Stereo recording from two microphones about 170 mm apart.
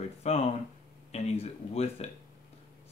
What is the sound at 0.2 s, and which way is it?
Speech, 40° left (ahead or behind).